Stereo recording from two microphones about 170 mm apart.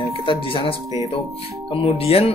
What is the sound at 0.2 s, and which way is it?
Music, 30° left (ahead or behind).